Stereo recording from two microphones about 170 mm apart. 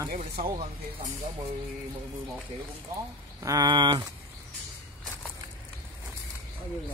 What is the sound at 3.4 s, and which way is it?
Speech, 20° right (ahead or behind).